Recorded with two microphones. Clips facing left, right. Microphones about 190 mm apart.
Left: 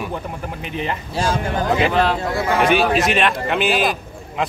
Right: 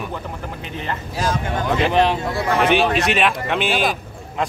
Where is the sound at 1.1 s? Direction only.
30° left (ahead or behind).